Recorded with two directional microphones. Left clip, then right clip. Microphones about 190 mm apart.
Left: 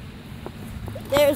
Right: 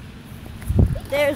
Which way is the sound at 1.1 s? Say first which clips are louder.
Left 2 dB; 20° left (ahead or behind).